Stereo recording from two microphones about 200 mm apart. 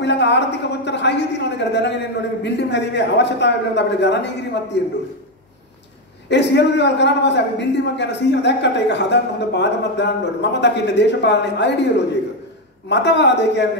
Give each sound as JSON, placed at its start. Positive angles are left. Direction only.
{"t": 0.0, "sound": "a woman's voice", "side_deg": 60}
{"t": 6.2, "sound": "a man's voice", "side_deg": 60}